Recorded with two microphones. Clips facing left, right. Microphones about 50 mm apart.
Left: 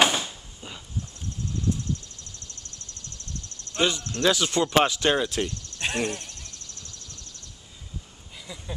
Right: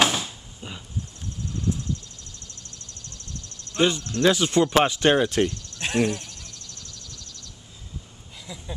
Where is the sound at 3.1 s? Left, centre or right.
Left.